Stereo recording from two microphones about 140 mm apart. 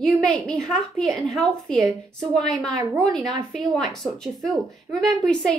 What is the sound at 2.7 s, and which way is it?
Speech, 20° right (ahead or behind).